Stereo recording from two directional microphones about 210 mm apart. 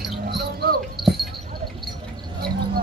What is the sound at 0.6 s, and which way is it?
Dog, 50° right (ahead or behind).